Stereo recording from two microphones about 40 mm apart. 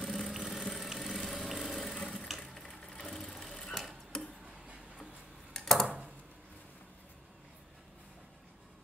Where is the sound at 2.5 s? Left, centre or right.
Centre.